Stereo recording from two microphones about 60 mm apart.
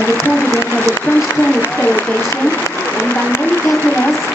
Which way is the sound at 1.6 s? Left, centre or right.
Left.